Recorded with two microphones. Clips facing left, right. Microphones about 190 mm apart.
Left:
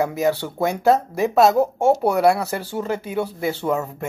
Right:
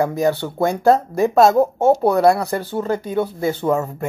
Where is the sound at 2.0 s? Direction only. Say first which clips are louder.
Right 3 dB; 10° left (ahead or behind).